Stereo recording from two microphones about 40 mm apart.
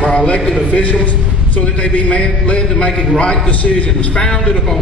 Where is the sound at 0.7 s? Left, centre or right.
Left.